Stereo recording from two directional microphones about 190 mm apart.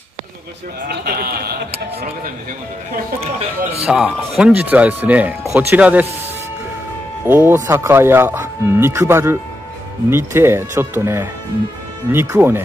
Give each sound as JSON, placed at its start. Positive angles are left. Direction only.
{"t": 0.8, "sound": "a man's voice", "side_deg": -55}
{"t": 3.8, "sound": "speech", "side_deg": -5}
{"t": 7.2, "sound": "speech", "side_deg": -10}